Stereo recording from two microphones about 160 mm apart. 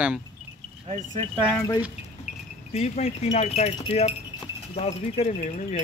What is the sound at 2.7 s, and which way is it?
Speech, 40° left (ahead or behind).